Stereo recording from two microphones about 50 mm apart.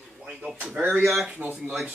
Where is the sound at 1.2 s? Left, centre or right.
Right.